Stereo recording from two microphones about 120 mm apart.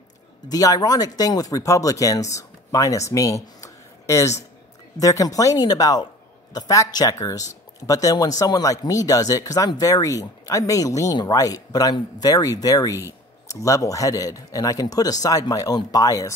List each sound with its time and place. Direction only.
0.5 s speech: 30° left (ahead or behind)